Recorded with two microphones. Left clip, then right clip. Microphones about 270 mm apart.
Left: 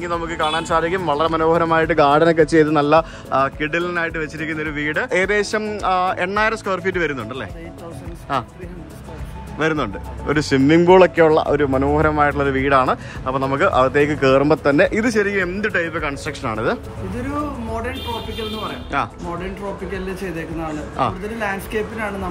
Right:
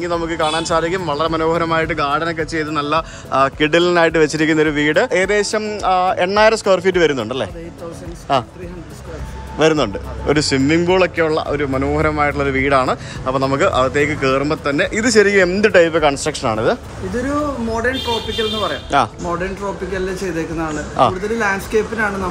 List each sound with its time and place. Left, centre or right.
0.0 s a man's voice: centre
9.6 s a man's voice: centre
18.9 s a man's voice: centre
20.9 s a man's voice: centre